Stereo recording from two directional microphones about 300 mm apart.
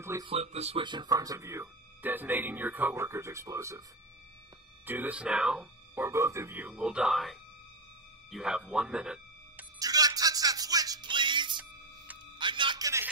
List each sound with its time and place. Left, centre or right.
0.0 s speech: centre
4.8 s speech: centre
8.3 s music: centre